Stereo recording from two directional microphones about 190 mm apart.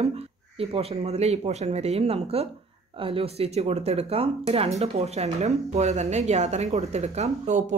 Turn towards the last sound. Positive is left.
turn(degrees=-35)  # may be behind; listen again after turning